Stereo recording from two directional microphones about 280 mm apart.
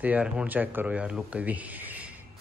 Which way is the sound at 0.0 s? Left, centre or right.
Centre.